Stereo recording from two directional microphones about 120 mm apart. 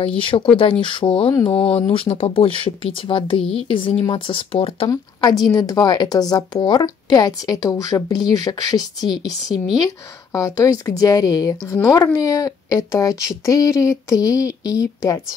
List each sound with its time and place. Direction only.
0.2 s speech: 50° left (ahead or behind)
4.8 s speech: 35° left (ahead or behind)
10.3 s speech: 30° left (ahead or behind)